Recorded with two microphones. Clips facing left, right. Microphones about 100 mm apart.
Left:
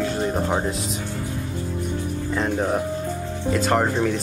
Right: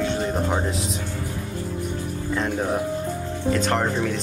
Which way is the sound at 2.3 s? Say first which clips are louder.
Left 1 dB; 5° left (ahead or behind).